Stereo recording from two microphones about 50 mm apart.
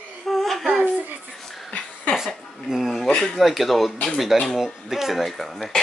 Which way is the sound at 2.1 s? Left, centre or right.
Left.